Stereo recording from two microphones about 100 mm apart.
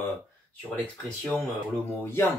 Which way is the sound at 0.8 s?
10° left (ahead or behind).